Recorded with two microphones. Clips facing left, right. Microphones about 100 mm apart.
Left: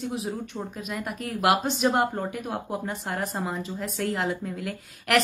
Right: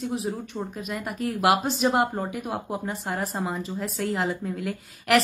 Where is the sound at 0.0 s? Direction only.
Centre (ahead or behind).